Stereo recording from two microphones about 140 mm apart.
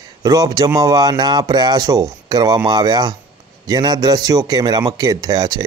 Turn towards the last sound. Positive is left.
turn(degrees=-25)  # may be behind; listen again after turning